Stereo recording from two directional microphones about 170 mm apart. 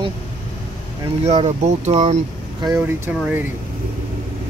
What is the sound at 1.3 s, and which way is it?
Speech, 40° right (ahead or behind).